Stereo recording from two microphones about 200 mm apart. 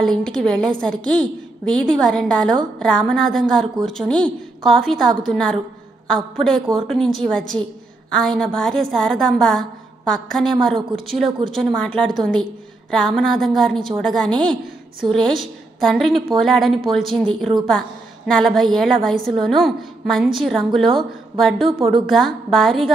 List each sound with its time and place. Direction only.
0.0 s a woman's voice: 5° left (ahead or behind)
21.6 s speech: 25° right (ahead or behind)
22.1 s a woman's voice: centre (ahead or behind)